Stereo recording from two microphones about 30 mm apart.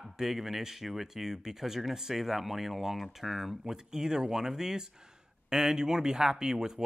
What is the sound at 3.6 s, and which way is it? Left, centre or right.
Speech, centre.